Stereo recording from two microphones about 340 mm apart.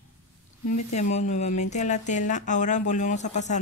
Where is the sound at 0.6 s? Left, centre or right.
Left.